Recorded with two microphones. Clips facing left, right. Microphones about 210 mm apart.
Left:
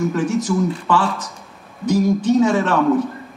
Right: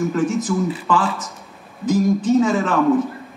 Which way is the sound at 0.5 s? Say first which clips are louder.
Left 1 dB; centre (ahead or behind).